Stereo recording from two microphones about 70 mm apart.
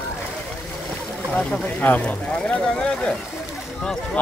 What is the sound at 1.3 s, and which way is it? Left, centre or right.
Speech, centre.